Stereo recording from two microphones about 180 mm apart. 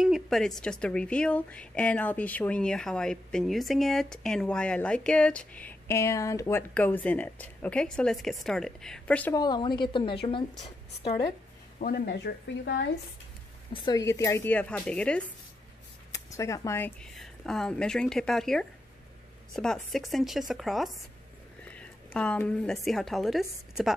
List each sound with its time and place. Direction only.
0.0 s speech: centre (ahead or behind)
9.3 s a woman's voice: 25° left (ahead or behind)
11.8 s speech: 60° left (ahead or behind)
13.8 s a woman's voice: 20° left (ahead or behind)
16.1 s a woman's voice: 15° left (ahead or behind); by 23.4 s centre (ahead or behind)